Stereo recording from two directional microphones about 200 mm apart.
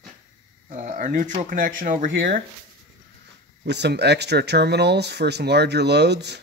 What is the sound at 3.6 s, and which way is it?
Speech, 55° right (ahead or behind).